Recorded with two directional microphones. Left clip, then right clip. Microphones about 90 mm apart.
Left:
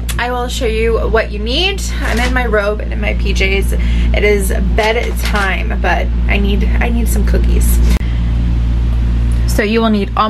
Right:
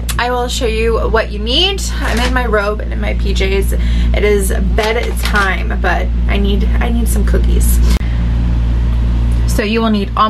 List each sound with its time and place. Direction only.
0.2 s a woman's voice: 10° right (ahead or behind)
5.5 s speech: 5° right (ahead or behind)
9.6 s speech: 20° left (ahead or behind)